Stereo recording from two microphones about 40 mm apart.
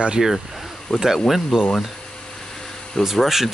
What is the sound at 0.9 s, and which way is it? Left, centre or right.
Speech, centre.